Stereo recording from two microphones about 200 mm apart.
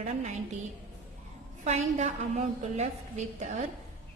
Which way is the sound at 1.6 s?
35° right (ahead or behind).